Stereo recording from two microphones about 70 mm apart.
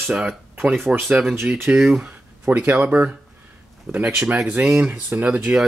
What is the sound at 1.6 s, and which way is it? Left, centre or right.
Speech, centre.